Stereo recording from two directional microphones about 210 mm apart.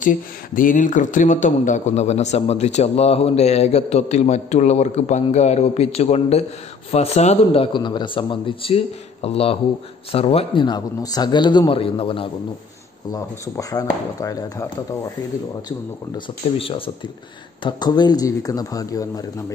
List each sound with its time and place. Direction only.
0.0 s a man's voice: 40° left (ahead or behind); by 14.7 s 15° left (ahead or behind)
16.5 s a man's voice: 25° left (ahead or behind)